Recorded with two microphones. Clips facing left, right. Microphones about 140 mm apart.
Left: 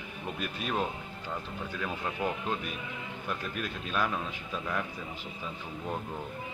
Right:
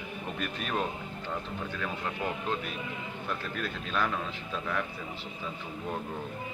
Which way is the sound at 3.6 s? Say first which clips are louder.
Even; 15° left (ahead or behind).